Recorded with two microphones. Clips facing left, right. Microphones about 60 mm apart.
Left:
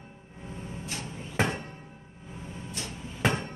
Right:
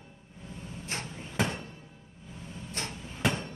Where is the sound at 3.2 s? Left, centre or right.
Left.